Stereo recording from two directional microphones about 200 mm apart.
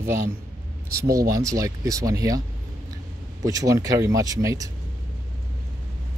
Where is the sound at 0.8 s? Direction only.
50° right (ahead or behind).